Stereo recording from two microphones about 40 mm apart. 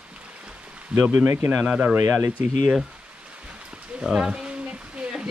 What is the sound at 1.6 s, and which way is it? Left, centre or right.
Speech, right.